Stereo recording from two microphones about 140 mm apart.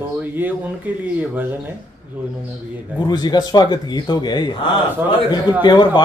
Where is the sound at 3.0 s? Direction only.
30° left (ahead or behind).